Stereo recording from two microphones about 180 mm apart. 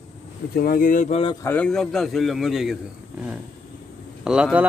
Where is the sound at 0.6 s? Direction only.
55° left (ahead or behind).